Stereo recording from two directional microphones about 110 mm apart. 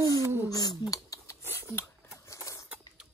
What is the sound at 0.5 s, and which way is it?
Speech, 35° left (ahead or behind).